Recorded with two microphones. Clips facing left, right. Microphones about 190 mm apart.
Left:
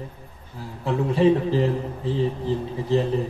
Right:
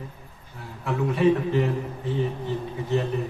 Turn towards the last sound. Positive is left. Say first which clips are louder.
# left 4 dB
turn(degrees=30)  # may be behind; listen again after turning